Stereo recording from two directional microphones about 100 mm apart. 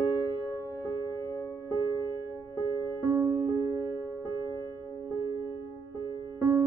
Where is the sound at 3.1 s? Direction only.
30° right (ahead or behind).